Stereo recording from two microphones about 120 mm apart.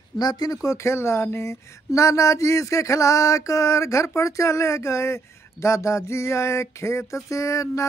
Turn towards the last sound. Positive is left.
turn(degrees=25)  # may be behind; listen again after turning